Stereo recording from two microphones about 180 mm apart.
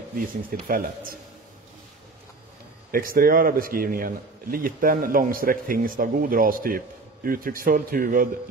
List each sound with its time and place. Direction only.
0.5 s a man's voice: 55° right (ahead or behind)
2.9 s a man's voice: 50° right (ahead or behind)